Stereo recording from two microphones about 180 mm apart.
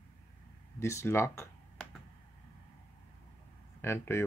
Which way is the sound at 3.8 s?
15° left (ahead or behind).